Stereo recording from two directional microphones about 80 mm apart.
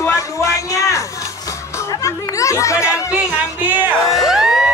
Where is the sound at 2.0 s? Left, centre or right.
Left.